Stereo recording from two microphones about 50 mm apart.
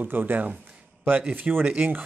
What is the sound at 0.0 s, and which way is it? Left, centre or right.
Speech, right.